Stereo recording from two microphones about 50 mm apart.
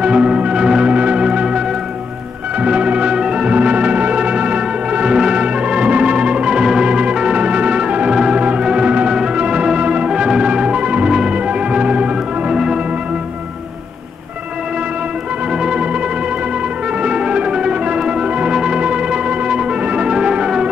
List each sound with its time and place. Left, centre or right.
0.0 s music: centre
2.6 s music: right
15.6 s music: centre
17.0 s music: centre